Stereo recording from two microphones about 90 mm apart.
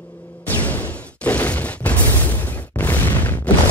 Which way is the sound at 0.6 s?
15° left (ahead or behind).